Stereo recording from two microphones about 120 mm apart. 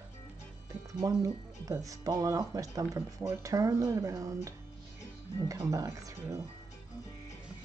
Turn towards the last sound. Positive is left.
turn(degrees=-25)  # may be behind; listen again after turning